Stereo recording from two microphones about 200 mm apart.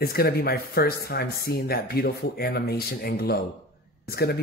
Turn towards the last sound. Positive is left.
turn(degrees=55)  # may be behind; listen again after turning